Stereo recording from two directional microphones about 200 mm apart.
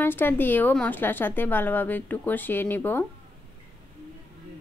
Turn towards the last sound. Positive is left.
turn(degrees=10)  # may be behind; listen again after turning